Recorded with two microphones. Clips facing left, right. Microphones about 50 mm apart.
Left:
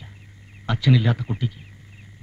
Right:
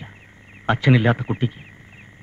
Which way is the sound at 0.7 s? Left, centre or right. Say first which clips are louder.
Right 4 dB; right.